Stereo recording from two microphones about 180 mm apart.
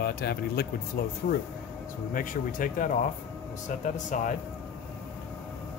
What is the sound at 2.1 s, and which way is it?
Speech, 50° left (ahead or behind).